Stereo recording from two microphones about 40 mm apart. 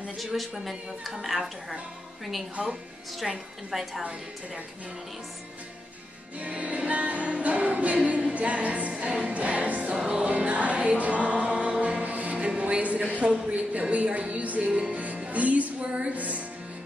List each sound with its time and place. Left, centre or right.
0.2 s speech: centre
2.6 s a woman's voice: right
3.2 s speech: centre
6.4 s music: right
8.9 s music: right